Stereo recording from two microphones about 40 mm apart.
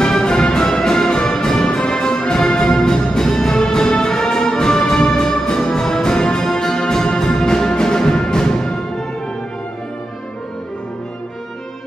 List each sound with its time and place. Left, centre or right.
0.0 s music: centre